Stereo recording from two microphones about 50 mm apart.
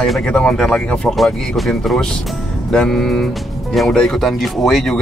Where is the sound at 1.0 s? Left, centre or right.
Centre.